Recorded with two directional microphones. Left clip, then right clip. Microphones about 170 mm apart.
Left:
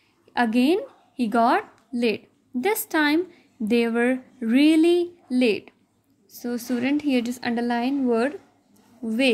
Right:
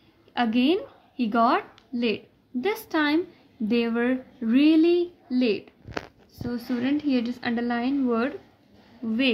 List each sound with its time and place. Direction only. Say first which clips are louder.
0.3 s a woman's voice: left 2 dB; 30° left (ahead or behind)